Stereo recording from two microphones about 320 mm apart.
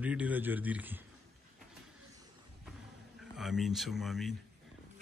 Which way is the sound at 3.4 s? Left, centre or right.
Centre.